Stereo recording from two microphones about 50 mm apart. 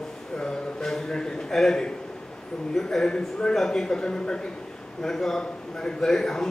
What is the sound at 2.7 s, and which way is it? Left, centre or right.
Speech, centre.